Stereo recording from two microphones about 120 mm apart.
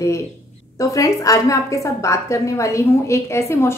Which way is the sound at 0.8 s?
30° left (ahead or behind).